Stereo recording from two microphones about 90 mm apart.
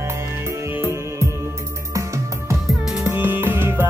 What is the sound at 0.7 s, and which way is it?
Music, 30° right (ahead or behind).